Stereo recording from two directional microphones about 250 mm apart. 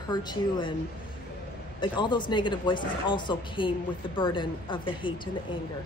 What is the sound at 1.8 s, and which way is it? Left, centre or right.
Speech, centre.